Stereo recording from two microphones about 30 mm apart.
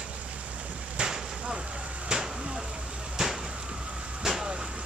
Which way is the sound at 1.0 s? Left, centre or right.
Right.